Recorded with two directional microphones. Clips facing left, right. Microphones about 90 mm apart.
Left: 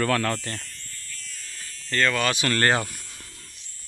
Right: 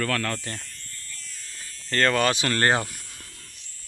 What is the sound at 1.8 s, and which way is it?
Speech, 40° right (ahead or behind).